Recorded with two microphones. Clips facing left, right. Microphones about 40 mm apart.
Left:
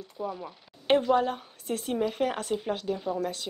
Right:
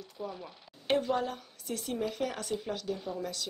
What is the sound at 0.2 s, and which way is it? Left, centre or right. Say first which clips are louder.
Speech: left 6 dB; centre.